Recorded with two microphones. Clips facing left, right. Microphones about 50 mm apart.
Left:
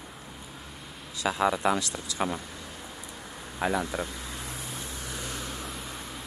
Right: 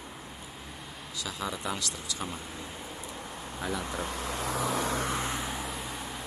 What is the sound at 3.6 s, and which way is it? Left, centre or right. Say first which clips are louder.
Speech: left 7 dB; left.